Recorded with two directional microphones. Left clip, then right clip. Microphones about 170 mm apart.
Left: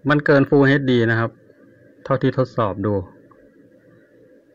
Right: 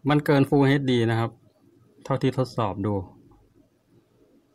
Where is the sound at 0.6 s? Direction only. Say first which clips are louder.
Left 6 dB; 15° right (ahead or behind).